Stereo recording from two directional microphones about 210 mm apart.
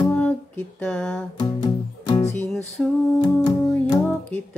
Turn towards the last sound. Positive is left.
turn(degrees=5)  # may be behind; listen again after turning